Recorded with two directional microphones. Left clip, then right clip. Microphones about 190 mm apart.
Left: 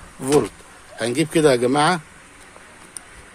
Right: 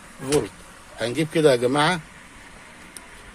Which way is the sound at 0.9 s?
20° left (ahead or behind).